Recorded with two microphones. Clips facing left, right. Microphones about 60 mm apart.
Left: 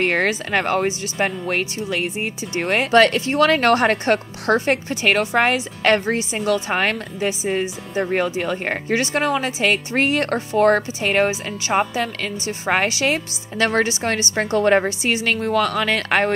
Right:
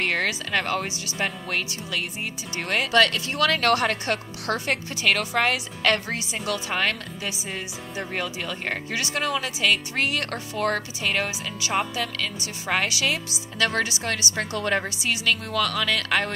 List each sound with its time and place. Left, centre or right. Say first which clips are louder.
0.0 s a woman's voice: left 6 dB; left